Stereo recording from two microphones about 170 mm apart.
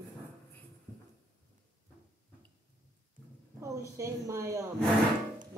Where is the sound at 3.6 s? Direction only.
20° right (ahead or behind).